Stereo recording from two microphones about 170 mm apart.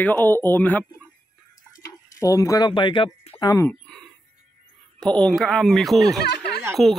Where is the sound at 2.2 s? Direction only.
20° left (ahead or behind).